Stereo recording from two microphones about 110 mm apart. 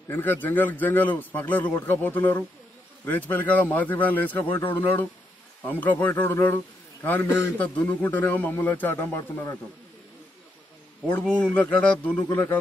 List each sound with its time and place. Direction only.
0.1 s a man's voice: 15° left (ahead or behind)
11.1 s a man's voice: 10° left (ahead or behind)